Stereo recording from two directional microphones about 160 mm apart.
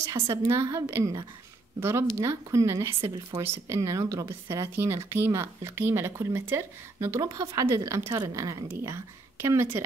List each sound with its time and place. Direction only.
0.0 s speech: 20° right (ahead or behind)